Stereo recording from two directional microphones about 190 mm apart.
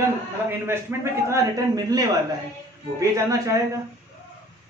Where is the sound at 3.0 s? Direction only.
15° right (ahead or behind).